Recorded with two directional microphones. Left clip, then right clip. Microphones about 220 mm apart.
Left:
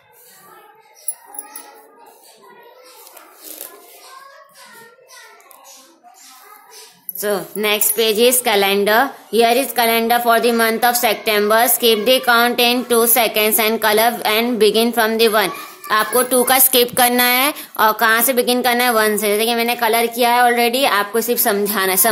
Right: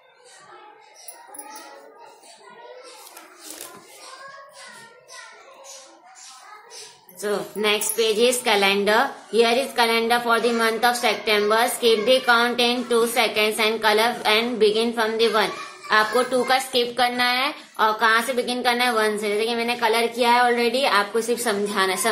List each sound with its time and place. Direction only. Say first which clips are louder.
7.2 s a woman's voice: left 5 dB; 45° left (ahead or behind)